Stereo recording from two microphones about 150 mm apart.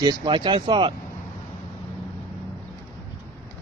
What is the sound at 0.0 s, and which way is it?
Speech, 30° right (ahead or behind).